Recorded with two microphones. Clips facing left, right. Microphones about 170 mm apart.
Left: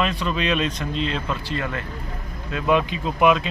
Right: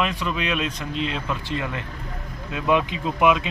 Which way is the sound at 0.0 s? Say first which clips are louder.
Left 2 dB; 5° right (ahead or behind).